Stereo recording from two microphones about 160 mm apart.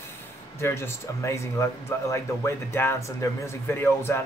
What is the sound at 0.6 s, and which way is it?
Speech, 15° left (ahead or behind).